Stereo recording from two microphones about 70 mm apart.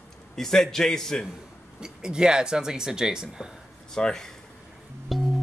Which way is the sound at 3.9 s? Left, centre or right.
Centre.